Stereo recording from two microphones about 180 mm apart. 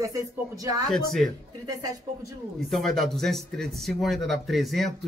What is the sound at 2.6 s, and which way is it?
Speech, centre (ahead or behind).